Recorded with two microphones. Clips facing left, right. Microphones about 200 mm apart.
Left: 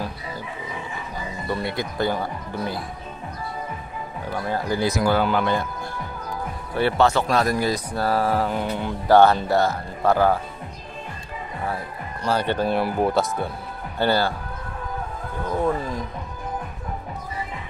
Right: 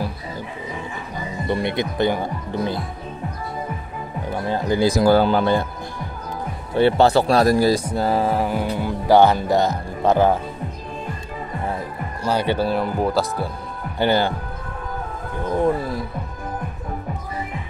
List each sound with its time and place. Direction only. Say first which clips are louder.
1.5 s speech: right 5 dB; 25° right (ahead or behind)
4.3 s speech: right 3 dB; 20° right (ahead or behind)
6.7 s speech: right 4 dB; 25° right (ahead or behind)
12.2 s speech: right 2 dB; 10° right (ahead or behind)
12.7 s speech: even; centre (ahead or behind)
13.9 s speech: right 2 dB; 15° right (ahead or behind)
15.5 s speech: right 3 dB; 15° right (ahead or behind)